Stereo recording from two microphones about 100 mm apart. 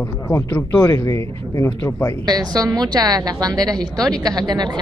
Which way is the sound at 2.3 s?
40° right (ahead or behind).